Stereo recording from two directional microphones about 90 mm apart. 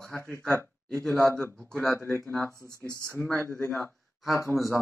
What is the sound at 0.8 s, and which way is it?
Speech, 10° left (ahead or behind).